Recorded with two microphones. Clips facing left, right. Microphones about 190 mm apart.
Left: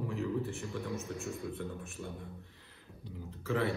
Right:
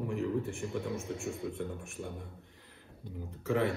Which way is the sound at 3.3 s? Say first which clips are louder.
Right 3 dB; 15° right (ahead or behind).